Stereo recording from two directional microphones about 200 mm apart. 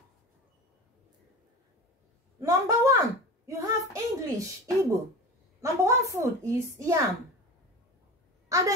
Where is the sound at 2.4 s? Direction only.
15° right (ahead or behind).